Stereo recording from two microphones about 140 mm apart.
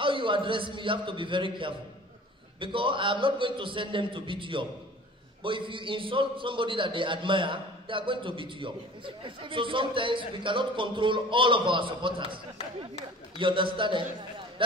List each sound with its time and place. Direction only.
0.0 s a man's voice: 35° right (ahead or behind)
13.4 s a man's voice: 35° right (ahead or behind)